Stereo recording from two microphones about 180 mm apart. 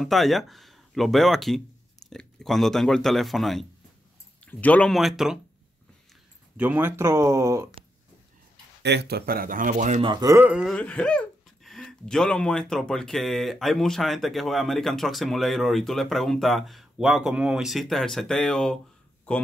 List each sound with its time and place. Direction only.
0.0 s speech: centre (ahead or behind)
6.5 s speech: 10° right (ahead or behind)
8.8 s speech: 65° right (ahead or behind); by 10.0 s 45° right (ahead or behind)
10.0 s speech: 20° right (ahead or behind); by 10.8 s 5° right (ahead or behind)
10.8 s speech: 5° left (ahead or behind)